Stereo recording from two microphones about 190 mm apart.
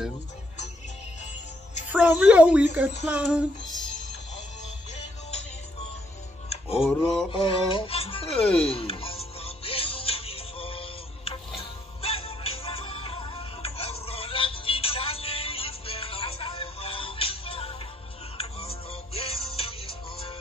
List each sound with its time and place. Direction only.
1.9 s a child's voice: 10° right (ahead or behind)
3.1 s music: 5° right (ahead or behind)
6.5 s a sound: 30° left (ahead or behind)
7.2 s speech: 25° left (ahead or behind)
8.6 s music: 30° left (ahead or behind)